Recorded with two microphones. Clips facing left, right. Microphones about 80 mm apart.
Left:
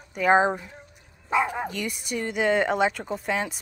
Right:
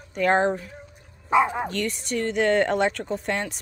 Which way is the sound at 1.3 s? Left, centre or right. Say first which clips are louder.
Right 4 dB; centre.